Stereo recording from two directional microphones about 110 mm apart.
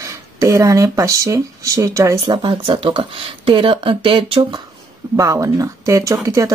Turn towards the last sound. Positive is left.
turn(degrees=-30)  # may be behind; listen again after turning